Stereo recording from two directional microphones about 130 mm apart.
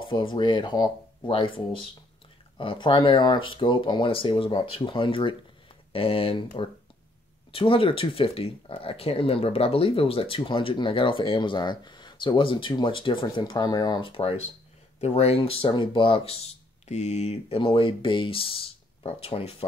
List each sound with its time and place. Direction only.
0.0 s speech: 40° left (ahead or behind)
7.5 s speech: 45° left (ahead or behind)
16.8 s speech: 60° left (ahead or behind)